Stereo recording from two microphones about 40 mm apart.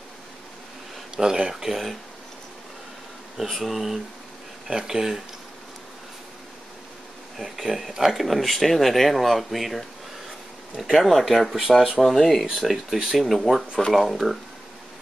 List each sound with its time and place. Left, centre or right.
1.1 s speech: centre
3.4 s speech: centre
4.6 s speech: centre
7.3 s speech: centre